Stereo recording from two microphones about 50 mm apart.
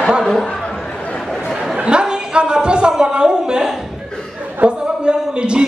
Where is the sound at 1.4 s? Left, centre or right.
Centre.